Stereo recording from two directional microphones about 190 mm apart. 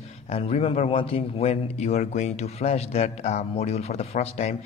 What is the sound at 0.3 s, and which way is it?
A man's voice, 30° left (ahead or behind).